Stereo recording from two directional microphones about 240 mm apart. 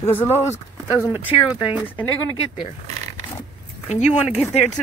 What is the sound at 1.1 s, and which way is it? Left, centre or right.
Speech, centre.